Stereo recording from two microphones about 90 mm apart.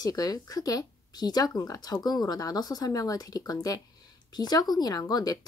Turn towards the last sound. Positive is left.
turn(degrees=45)  # may be behind; listen again after turning